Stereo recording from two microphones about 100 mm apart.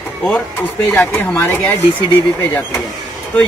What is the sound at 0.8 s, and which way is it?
Speech, 20° left (ahead or behind).